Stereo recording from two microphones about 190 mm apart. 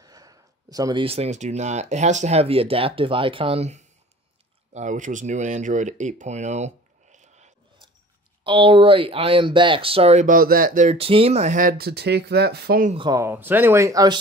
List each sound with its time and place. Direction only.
0.0 s speech: 20° right (ahead or behind); by 7.5 s 40° right (ahead or behind)
8.5 s speech: 25° right (ahead or behind); by 12.9 s 55° right (ahead or behind)
12.9 s speech: 20° right (ahead or behind)